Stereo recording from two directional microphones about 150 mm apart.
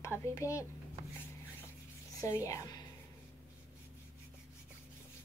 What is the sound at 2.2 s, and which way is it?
Speech, 20° left (ahead or behind).